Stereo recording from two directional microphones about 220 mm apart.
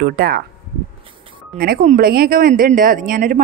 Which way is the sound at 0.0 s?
45° right (ahead or behind).